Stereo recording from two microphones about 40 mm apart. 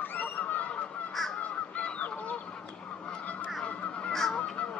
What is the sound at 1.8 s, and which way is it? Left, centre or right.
Goose, left.